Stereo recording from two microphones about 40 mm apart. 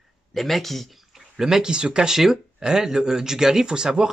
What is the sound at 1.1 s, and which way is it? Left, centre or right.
Speech, centre.